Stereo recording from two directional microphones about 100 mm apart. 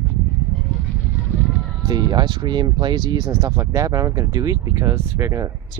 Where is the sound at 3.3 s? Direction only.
30° right (ahead or behind).